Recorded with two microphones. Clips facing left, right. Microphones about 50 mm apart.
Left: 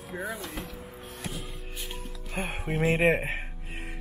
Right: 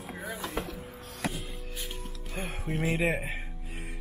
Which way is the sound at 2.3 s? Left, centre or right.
Left.